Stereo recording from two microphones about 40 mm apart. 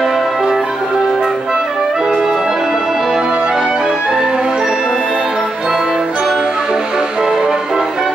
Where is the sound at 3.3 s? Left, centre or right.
Right.